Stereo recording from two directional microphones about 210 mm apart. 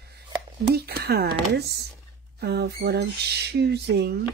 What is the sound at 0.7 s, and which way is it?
Speech, 50° right (ahead or behind).